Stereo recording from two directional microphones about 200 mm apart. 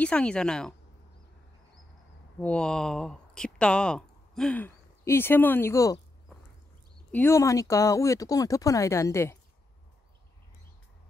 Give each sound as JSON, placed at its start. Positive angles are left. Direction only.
{"t": 0.0, "sound": "a woman's voice", "side_deg": 5}
{"t": 2.4, "sound": "speech", "side_deg": 5}
{"t": 7.1, "sound": "speech", "side_deg": 10}